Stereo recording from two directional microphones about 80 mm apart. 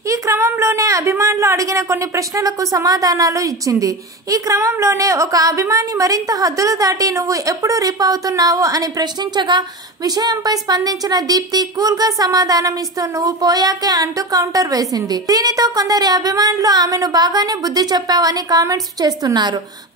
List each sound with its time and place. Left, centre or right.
0.1 s a woman's voice: right